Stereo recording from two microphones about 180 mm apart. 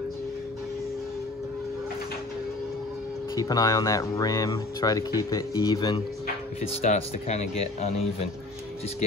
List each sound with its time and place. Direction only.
3.3 s speech: 20° left (ahead or behind)
6.8 s speech: 40° left (ahead or behind)